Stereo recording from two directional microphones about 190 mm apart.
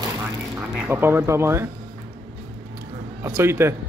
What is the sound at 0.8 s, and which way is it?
Speech, 10° right (ahead or behind).